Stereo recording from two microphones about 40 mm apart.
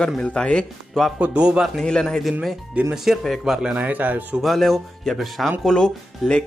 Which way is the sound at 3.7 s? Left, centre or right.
Right.